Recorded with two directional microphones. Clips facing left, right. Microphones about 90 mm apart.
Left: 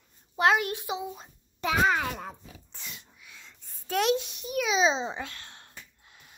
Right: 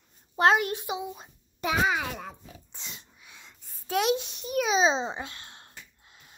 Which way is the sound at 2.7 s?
20° right (ahead or behind).